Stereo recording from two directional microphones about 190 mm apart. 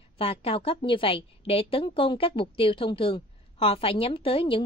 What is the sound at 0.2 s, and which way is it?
A woman's voice, 30° left (ahead or behind).